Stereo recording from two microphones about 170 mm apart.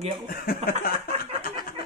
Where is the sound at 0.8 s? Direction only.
60° left (ahead or behind).